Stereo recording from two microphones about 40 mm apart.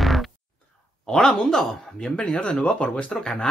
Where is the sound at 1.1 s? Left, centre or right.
Centre.